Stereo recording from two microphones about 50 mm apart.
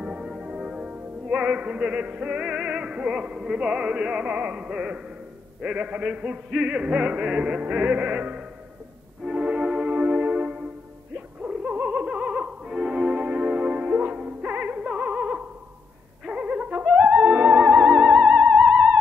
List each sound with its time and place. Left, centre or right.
0.0 s music: centre